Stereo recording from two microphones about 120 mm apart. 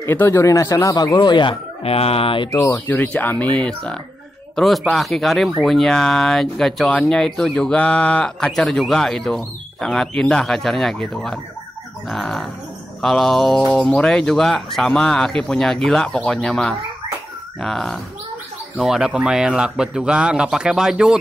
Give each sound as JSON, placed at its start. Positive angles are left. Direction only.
{"t": 0.0, "sound": "speech", "side_deg": 20}
{"t": 1.8, "sound": "speech", "side_deg": 55}
{"t": 2.7, "sound": "speech", "side_deg": 15}